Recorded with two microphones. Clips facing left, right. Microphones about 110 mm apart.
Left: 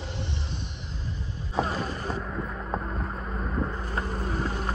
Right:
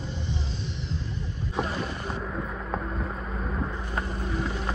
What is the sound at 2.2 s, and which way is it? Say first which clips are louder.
Vehicle: even; centre (ahead or behind).